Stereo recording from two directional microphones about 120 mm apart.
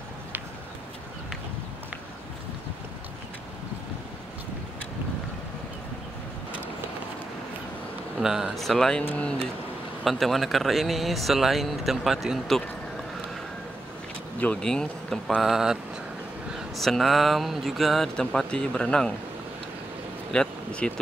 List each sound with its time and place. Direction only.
8.2 s speech: 5° right (ahead or behind); by 9.3 s 15° left (ahead or behind)
10.0 s speech: centre (ahead or behind)
14.4 s speech: 5° left (ahead or behind)
20.3 s speech: 10° left (ahead or behind)